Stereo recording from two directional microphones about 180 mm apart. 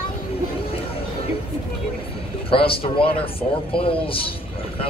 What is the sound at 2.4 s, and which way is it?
Speech, 30° left (ahead or behind).